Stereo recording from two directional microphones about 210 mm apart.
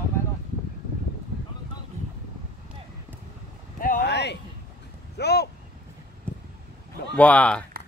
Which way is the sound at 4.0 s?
55° left (ahead or behind).